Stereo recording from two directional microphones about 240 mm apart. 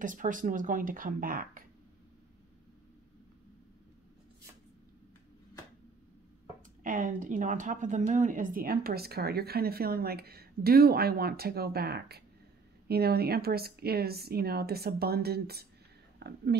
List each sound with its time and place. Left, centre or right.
0.0 s speech: right
6.8 s speech: right